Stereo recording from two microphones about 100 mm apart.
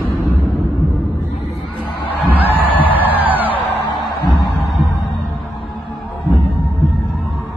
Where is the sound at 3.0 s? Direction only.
15° right (ahead or behind).